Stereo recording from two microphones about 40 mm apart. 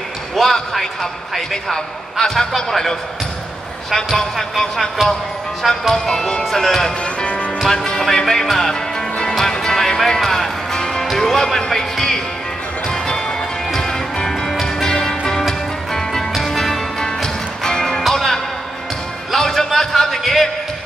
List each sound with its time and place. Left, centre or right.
0.4 s basketball bounce: centre
1.3 s a man's voice: centre
7.2 s music: left
7.6 s music: centre
8.0 s a man's voice: centre
9.4 s music: centre
19.4 s music: centre
19.8 s a sound: centre